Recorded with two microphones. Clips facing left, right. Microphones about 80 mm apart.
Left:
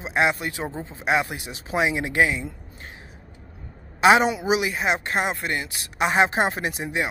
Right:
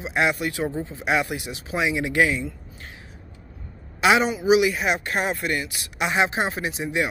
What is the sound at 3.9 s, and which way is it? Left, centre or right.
A woman's voice, left.